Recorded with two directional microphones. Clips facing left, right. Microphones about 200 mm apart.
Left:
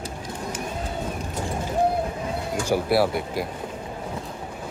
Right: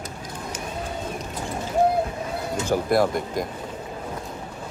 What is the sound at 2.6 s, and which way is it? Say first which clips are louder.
Speech: even; 10° left (ahead or behind).